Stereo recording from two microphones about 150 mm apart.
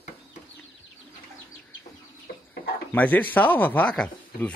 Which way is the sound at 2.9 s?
10° left (ahead or behind).